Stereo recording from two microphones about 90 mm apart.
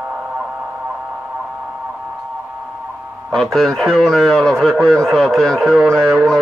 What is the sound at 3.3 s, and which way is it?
A man's voice, 5° left (ahead or behind).